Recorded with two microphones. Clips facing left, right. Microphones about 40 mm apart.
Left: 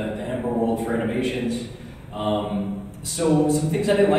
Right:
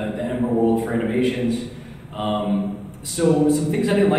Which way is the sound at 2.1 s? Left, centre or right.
Centre.